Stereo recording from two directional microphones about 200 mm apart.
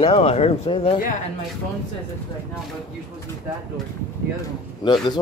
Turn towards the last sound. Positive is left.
turn(degrees=20)  # may be behind; listen again after turning